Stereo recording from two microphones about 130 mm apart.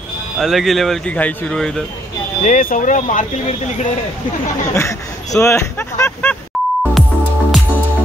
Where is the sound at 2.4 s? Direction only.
85° left; by 3.9 s 65° left (ahead or behind).